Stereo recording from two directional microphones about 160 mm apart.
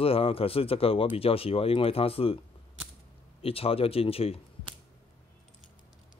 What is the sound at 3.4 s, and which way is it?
Speech, 35° left (ahead or behind).